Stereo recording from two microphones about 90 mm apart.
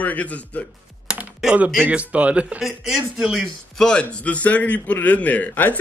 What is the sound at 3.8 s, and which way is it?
A man's voice, 10° left (ahead or behind).